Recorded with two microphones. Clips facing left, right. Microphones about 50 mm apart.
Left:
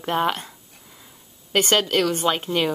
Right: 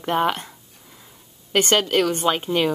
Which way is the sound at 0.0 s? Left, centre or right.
Centre.